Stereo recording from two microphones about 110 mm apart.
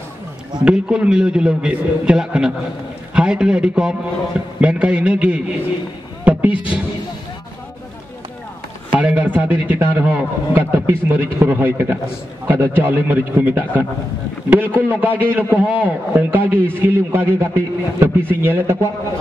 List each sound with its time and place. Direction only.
0.7 s a man's voice: 10° right (ahead or behind)
8.9 s a man's voice: 15° right (ahead or behind)